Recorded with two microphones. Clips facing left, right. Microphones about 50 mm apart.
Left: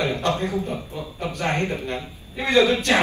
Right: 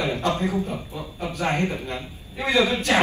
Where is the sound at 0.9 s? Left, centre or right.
Left.